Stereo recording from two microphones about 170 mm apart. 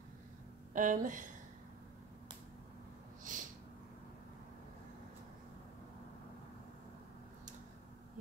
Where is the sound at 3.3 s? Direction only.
50° right (ahead or behind).